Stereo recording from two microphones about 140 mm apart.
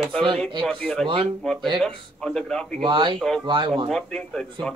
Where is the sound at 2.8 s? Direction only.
35° right (ahead or behind).